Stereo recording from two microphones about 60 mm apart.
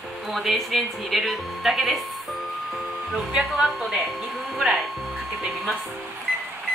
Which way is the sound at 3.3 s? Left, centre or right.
Centre.